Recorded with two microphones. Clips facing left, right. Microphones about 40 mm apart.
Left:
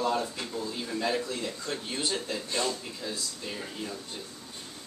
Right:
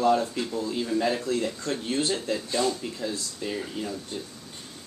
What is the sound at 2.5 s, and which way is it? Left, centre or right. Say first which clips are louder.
Speech: right 4 dB; centre.